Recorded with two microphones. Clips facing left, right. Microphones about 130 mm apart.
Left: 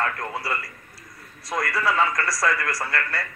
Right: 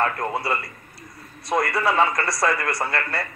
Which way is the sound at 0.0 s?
25° right (ahead or behind).